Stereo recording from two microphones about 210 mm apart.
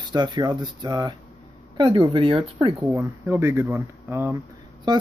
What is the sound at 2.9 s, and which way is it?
Speech, 15° right (ahead or behind).